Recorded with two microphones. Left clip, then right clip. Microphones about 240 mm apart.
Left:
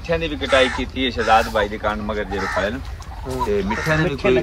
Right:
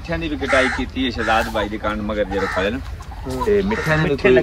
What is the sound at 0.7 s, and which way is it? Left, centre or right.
Speech, left.